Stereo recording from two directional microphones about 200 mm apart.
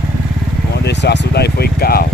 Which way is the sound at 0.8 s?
55° left (ahead or behind).